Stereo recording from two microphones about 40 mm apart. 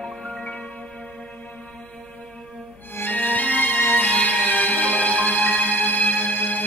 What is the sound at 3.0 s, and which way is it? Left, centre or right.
Music, left.